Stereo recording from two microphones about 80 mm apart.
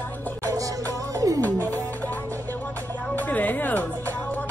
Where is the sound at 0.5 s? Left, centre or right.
Right.